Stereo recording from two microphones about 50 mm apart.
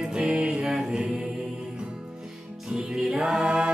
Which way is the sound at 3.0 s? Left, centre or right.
Centre.